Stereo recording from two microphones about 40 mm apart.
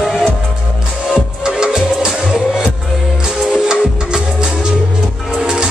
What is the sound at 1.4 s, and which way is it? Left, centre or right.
Music, centre.